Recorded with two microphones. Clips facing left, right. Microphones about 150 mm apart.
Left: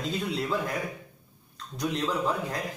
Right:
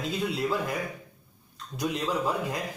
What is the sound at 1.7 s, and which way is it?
Speech, 10° right (ahead or behind).